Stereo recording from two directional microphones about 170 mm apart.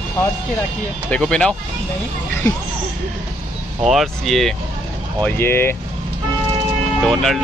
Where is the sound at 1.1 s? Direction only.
5° left (ahead or behind).